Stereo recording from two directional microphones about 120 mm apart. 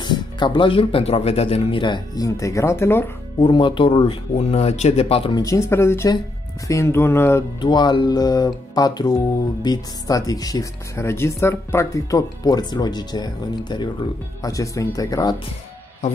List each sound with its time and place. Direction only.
0.0 s speech: 40° left (ahead or behind); by 3.1 s 20° left (ahead or behind)
3.3 s speech: 45° left (ahead or behind)
5.3 s speech: 30° left (ahead or behind)
7.6 s speech: 40° left (ahead or behind)